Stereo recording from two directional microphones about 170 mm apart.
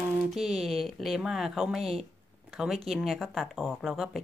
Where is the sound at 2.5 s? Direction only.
Centre (ahead or behind).